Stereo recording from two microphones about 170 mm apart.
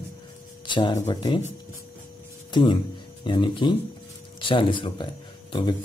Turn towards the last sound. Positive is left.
turn(degrees=30)  # may be behind; listen again after turning